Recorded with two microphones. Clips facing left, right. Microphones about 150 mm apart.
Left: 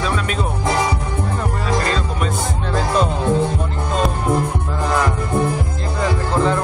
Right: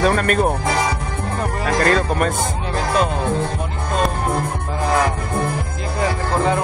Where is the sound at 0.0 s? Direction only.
55° right (ahead or behind).